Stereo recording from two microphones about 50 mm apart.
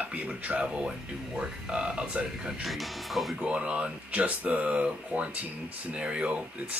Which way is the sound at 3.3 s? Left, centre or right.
Right.